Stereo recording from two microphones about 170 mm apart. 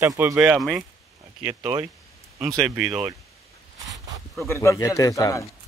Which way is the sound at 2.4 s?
Centre (ahead or behind).